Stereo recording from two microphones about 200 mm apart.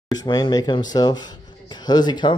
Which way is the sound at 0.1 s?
20° left (ahead or behind).